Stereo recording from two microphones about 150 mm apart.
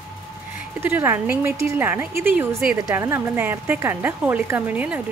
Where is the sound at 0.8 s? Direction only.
15° right (ahead or behind).